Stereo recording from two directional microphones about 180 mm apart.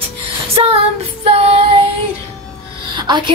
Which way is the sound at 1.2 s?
35° right (ahead or behind).